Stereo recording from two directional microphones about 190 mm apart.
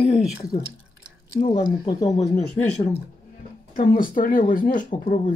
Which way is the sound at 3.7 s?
45° left (ahead or behind).